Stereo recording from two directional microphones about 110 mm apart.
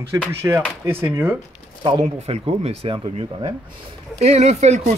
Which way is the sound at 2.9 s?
50° right (ahead or behind).